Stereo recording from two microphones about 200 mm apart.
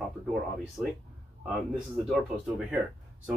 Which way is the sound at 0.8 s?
5° right (ahead or behind).